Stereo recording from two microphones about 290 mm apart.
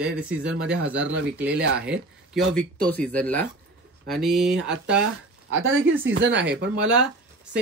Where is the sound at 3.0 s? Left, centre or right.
Centre.